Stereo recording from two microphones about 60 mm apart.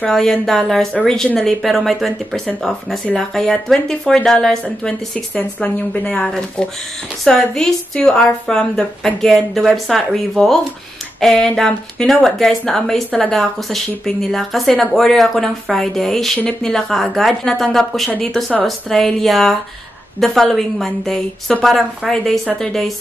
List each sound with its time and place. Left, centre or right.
0.0 s a woman's voice: centre
5.3 s speech: left
6.0 s a woman's voice: centre